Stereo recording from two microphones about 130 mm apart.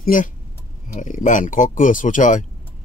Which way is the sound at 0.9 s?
75° left (ahead or behind).